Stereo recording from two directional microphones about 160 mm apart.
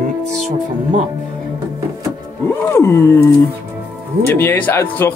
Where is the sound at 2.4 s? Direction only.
15° left (ahead or behind).